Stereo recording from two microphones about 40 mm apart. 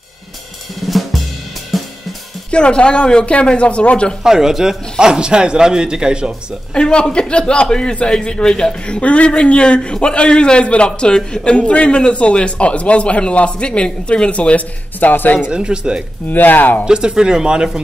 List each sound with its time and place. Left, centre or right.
1.7 s cymbal: centre
2.5 s a man's voice: left
4.2 s speech: centre
6.7 s a man's voice: left
11.5 s speech: left
15.4 s speech: right
16.3 s speech: left
16.8 s speech: centre